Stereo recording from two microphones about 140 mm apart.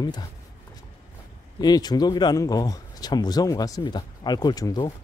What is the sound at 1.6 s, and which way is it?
Speech, 30° left (ahead or behind).